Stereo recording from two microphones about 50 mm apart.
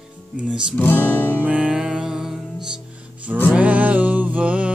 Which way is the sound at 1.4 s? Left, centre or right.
Right.